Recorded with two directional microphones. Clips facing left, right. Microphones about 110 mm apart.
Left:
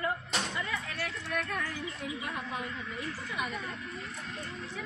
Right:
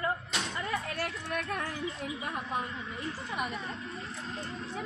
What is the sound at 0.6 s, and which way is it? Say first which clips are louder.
Speech: right 3 dB; 45° right (ahead or behind).